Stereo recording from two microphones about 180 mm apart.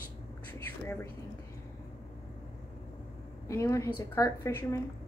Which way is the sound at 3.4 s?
15° left (ahead or behind).